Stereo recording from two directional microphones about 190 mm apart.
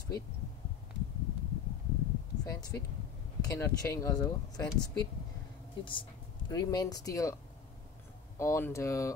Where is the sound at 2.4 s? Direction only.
20° left (ahead or behind).